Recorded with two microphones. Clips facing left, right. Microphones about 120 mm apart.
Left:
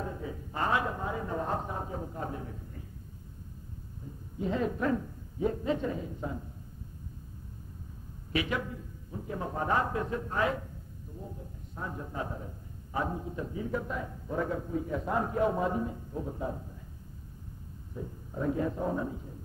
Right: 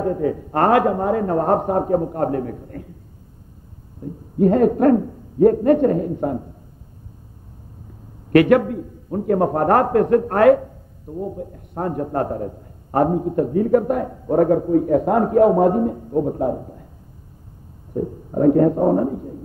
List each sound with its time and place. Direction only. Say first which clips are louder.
0.0 s a man's voice: right 17 dB; 65° right (ahead or behind)
4.0 s a man's voice: right 18 dB; 60° right (ahead or behind)
8.3 s a man's voice: right 19 dB; 65° right (ahead or behind)
17.9 s a man's voice: right 16 dB; 55° right (ahead or behind)